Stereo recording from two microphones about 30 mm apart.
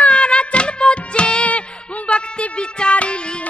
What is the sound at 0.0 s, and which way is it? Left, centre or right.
Music, left.